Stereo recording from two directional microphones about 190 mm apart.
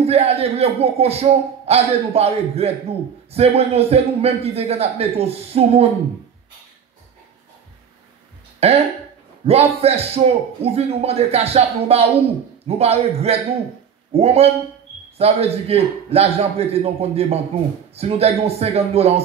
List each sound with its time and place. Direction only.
0.0 s a man's voice: 30° right (ahead or behind)
8.6 s a man's voice: 30° right (ahead or behind)